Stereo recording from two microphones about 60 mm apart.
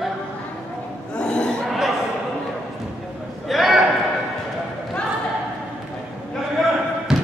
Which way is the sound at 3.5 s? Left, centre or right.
Centre.